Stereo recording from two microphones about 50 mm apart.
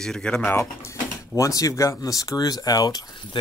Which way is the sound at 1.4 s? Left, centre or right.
Left.